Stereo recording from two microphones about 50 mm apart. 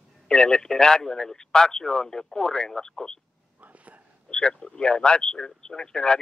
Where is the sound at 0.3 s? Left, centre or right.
Centre.